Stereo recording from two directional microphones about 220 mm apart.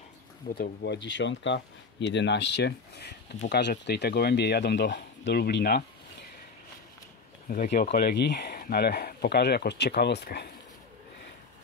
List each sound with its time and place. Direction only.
0.6 s speech: 50° left (ahead or behind)
7.4 s speech: 40° left (ahead or behind)